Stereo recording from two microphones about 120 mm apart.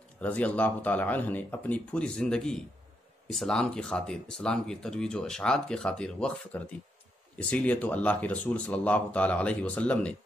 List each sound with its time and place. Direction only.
0.2 s speech: 10° left (ahead or behind)